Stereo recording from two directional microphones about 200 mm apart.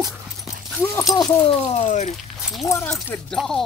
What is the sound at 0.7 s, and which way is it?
Speech, 10° left (ahead or behind).